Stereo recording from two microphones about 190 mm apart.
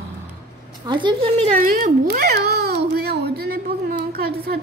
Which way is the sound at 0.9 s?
25° right (ahead or behind).